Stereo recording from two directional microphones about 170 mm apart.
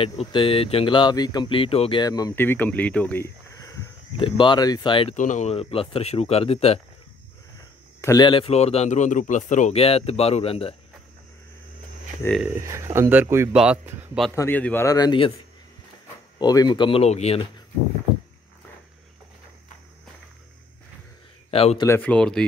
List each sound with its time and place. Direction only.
0.2 s speech: 30° left (ahead or behind)
5.1 s a man's voice: 45° left (ahead or behind)
8.0 s a man's voice: 20° left (ahead or behind)
12.2 s speech: 15° left (ahead or behind)
12.5 s speech: 15° right (ahead or behind)
14.3 s speech: 15° left (ahead or behind)
16.3 s speech: 25° left (ahead or behind)
21.5 s speech: 35° left (ahead or behind)
21.8 s speech: 10° left (ahead or behind)